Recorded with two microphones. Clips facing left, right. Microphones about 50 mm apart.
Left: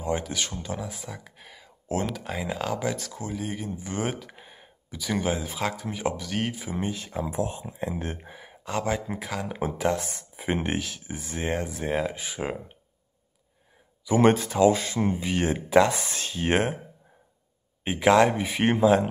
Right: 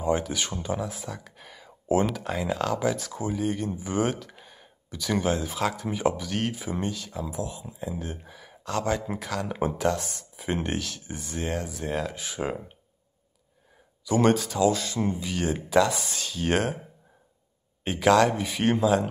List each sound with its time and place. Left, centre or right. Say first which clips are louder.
0.0 s speech: right 2 dB; centre
4.3 s a sound: left 1 dB; centre
4.8 s speech: right 1 dB; centre
6.9 s speech: left 2 dB; left; by 9.8 s centre
9.8 s speech: even; left
12.2 s speech: right 1 dB; centre
14.0 s speech: left 2 dB; left
17.8 s speech: left 1 dB; centre